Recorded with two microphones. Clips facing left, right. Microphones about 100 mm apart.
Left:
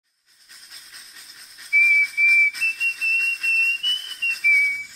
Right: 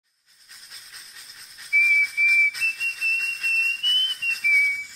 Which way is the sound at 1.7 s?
Centre (ahead or behind).